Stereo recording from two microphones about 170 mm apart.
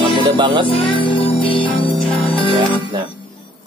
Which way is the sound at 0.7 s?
30° left (ahead or behind).